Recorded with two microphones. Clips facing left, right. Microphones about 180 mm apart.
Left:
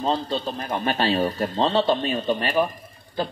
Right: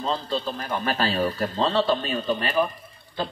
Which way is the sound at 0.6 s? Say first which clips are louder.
Left 2 dB; 30° left (ahead or behind).